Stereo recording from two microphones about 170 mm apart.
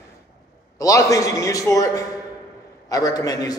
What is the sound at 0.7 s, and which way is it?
A man's voice, 20° left (ahead or behind).